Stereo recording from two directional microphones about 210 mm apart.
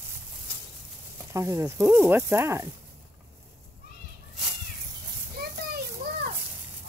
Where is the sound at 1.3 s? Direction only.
15° right (ahead or behind).